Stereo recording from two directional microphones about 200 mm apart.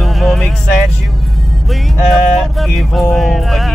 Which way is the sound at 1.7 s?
Centre (ahead or behind).